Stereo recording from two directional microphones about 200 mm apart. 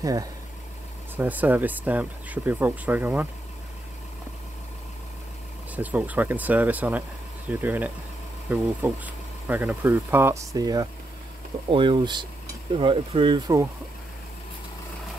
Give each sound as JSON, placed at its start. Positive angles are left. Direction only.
{"t": 0.0, "sound": "speech", "side_deg": -15}
{"t": 5.8, "sound": "speech", "side_deg": -10}